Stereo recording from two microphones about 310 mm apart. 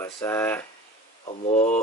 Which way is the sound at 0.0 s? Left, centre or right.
Centre.